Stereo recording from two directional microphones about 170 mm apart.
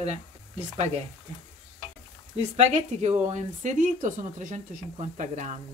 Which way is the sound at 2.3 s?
40° right (ahead or behind).